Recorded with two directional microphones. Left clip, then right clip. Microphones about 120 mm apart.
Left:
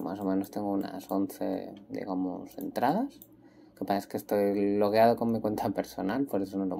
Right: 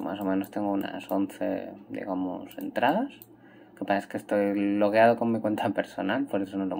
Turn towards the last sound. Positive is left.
turn(degrees=25)  # may be behind; listen again after turning